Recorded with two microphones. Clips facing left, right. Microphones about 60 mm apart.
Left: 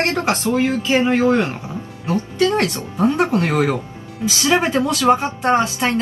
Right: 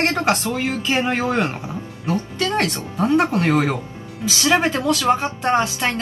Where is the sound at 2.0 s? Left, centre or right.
Left.